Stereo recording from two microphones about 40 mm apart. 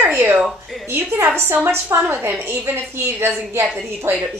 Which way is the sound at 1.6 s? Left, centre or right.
Right.